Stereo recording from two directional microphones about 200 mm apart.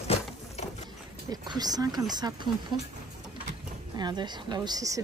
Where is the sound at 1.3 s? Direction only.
20° right (ahead or behind).